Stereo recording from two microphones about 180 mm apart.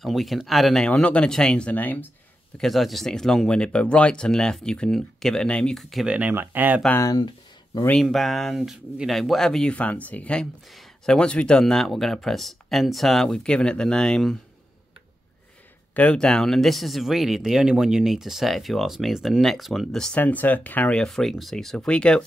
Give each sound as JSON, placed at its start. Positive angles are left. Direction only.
{"t": 0.0, "sound": "speech", "side_deg": 0}
{"t": 6.8, "sound": "speech", "side_deg": 15}
{"t": 7.8, "sound": "speech", "side_deg": 5}
{"t": 15.9, "sound": "speech", "side_deg": 10}